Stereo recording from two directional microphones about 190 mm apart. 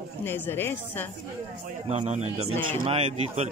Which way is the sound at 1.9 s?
35° right (ahead or behind).